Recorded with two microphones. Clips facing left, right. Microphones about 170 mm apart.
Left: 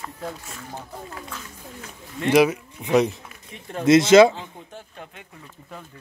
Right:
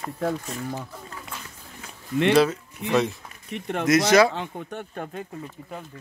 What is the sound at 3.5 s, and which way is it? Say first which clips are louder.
Speech: right 4 dB; 75° right (ahead or behind).